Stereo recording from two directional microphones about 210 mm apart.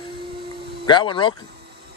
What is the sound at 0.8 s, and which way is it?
Speech, 20° left (ahead or behind).